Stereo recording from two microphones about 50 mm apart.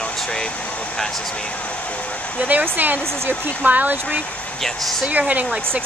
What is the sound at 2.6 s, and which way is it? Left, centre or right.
Speech, right.